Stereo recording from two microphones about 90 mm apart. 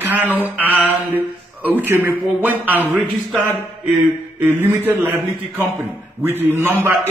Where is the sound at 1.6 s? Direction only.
20° right (ahead or behind).